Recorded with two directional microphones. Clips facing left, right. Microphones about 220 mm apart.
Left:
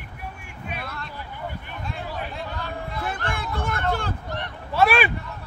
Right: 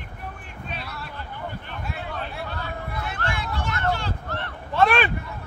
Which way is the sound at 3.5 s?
55° left (ahead or behind).